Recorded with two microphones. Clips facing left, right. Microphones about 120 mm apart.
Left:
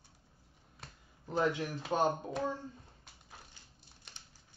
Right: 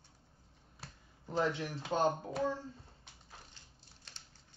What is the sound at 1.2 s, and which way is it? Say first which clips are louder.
Speech: left 2 dB; 20° left (ahead or behind).